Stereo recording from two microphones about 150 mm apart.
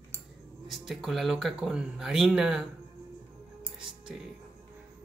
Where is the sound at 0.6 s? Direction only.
Centre (ahead or behind).